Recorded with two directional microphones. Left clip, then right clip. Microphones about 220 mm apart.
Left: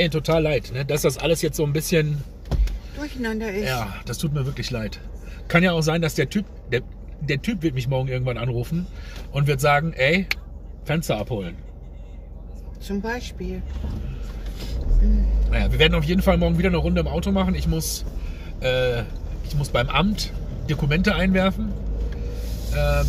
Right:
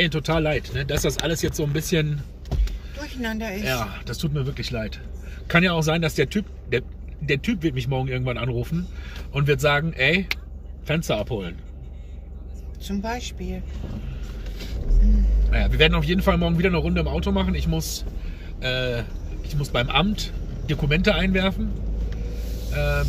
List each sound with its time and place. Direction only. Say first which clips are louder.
0.0 s speech: left 2 dB; 20° left (ahead or behind)
3.0 s speech: left 2 dB; 10° right (ahead or behind)
3.6 s speech: even; 20° left (ahead or behind)
7.2 s speech: right 1 dB; 20° left (ahead or behind)
12.8 s speech: left 1 dB; 10° right (ahead or behind)
15.5 s speech: even; 20° left (ahead or behind)
22.7 s speech: left 2 dB; 20° left (ahead or behind)